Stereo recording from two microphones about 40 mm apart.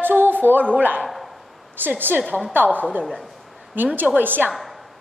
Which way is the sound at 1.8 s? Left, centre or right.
Right.